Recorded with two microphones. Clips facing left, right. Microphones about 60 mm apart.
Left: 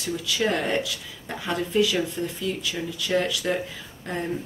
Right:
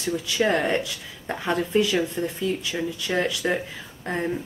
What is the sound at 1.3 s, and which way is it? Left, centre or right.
Speech, right.